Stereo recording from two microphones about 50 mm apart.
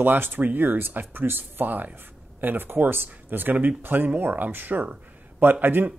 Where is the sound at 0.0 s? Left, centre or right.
Right.